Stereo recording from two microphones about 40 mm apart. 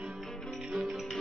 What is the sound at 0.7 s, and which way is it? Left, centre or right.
Music, centre.